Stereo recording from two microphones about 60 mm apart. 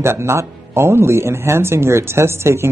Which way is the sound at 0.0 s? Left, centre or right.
Right.